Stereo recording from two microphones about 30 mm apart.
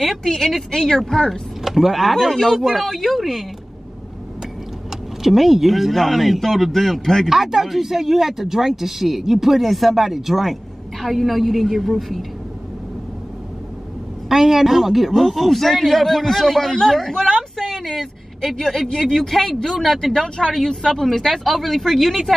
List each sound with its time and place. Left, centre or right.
0.2 s speech: centre
1.6 s a man's voice: centre
5.2 s a man's voice: centre
7.2 s speech: centre
14.3 s a man's voice: centre